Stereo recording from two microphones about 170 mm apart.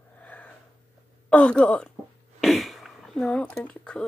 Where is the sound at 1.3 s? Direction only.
5° left (ahead or behind).